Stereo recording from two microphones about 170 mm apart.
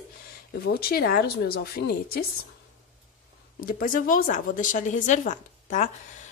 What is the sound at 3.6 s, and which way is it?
A woman's voice, 55° left (ahead or behind).